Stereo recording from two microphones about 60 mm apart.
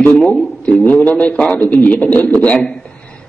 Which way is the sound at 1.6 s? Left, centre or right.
Left.